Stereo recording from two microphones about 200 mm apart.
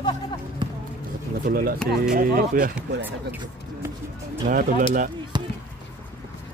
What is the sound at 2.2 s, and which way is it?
Speech, 45° right (ahead or behind).